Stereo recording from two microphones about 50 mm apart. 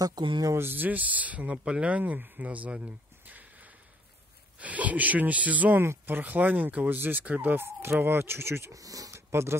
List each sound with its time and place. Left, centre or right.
0.6 s speech: right
5.8 s speech: right
7.5 s speech: right